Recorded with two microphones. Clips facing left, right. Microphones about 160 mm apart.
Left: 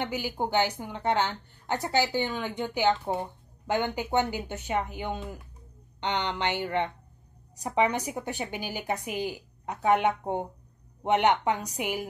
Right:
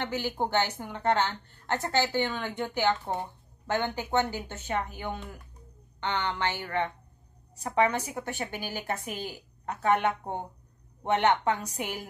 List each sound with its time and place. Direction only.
0.0 s a woman's voice: 10° left (ahead or behind)